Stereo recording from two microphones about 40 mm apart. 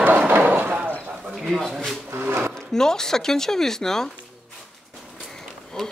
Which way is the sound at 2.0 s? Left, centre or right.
Right.